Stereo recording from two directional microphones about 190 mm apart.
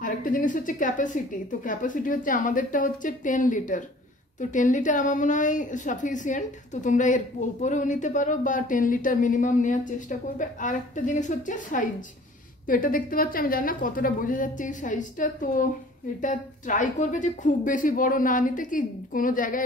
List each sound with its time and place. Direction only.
0.0 s a woman's voice: 45° left (ahead or behind)